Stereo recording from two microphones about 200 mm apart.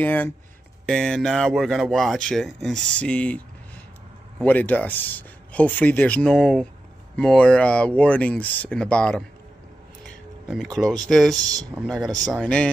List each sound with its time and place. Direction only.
0.0 s speech: 10° left (ahead or behind)
4.5 s speech: 10° left (ahead or behind)
10.5 s speech: centre (ahead or behind)
11.3 s speech: 20° right (ahead or behind)
11.7 s speech: centre (ahead or behind)